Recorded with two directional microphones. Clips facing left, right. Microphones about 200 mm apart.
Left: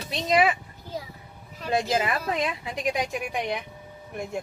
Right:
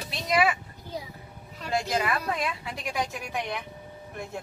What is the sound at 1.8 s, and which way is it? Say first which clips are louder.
A woman's voice: left 2 dB; 25° left (ahead or behind).